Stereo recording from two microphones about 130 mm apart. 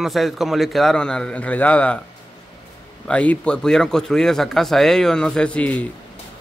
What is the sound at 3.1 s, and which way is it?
A man's voice, 10° left (ahead or behind).